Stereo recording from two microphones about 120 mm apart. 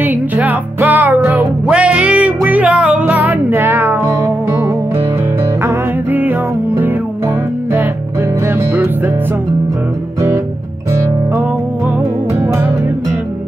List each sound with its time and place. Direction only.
0.0 s music: 15° right (ahead or behind)
5.6 s music: 20° right (ahead or behind)
8.5 s music: 15° right (ahead or behind)